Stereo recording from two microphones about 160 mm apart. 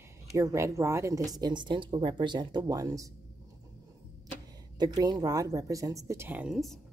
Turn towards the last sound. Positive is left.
turn(degrees=0)  # may be behind; listen again after turning